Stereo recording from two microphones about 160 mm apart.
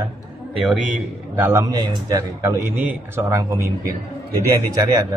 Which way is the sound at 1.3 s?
15° right (ahead or behind).